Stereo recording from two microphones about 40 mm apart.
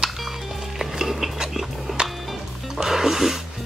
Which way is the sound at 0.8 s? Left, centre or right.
Centre.